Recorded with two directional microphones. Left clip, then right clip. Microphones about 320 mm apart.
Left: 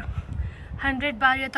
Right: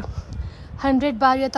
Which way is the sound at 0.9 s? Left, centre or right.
Centre.